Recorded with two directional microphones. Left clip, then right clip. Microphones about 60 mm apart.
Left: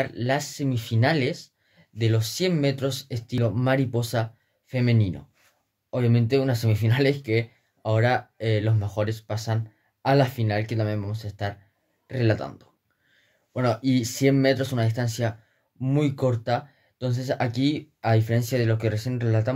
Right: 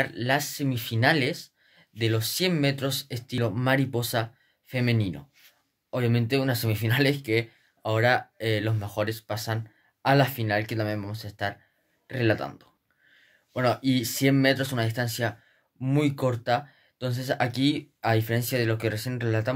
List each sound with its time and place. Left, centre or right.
0.0 s speech: centre